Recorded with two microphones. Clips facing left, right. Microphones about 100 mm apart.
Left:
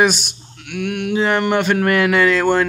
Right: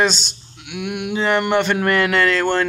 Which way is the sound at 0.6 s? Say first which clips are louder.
Left 3 dB; 5° right (ahead or behind).